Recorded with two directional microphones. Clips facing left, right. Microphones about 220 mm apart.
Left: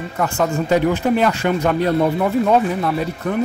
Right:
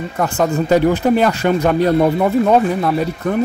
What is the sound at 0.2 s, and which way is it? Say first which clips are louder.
Speech: right 3 dB; 40° right (ahead or behind).